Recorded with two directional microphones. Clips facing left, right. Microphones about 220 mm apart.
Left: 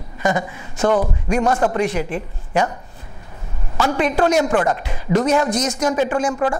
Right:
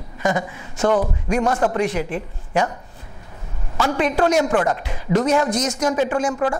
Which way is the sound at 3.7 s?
20° left (ahead or behind).